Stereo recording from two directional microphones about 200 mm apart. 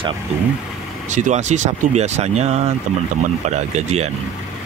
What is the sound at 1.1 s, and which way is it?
Speech, 35° right (ahead or behind).